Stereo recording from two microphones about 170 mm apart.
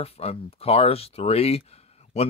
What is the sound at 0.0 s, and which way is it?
Speech, 35° left (ahead or behind).